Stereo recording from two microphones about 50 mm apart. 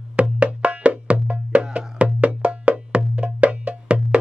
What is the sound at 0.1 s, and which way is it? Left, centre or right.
Music, right.